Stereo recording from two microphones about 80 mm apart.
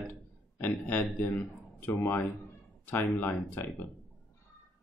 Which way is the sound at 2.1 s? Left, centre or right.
Left.